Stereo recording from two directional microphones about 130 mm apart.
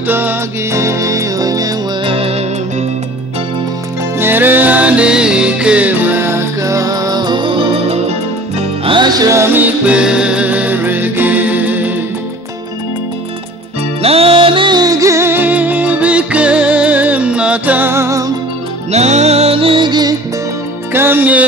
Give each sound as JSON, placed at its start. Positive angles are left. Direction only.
{"t": 0.0, "sound": "music", "side_deg": -15}
{"t": 2.0, "sound": "music", "side_deg": -50}
{"t": 4.2, "sound": "music", "side_deg": -15}
{"t": 14.0, "sound": "music", "side_deg": -45}
{"t": 18.9, "sound": "music", "side_deg": -60}
{"t": 20.9, "sound": "music", "side_deg": -15}